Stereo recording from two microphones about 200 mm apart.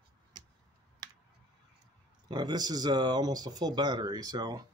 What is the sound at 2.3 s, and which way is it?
Speech, 20° right (ahead or behind).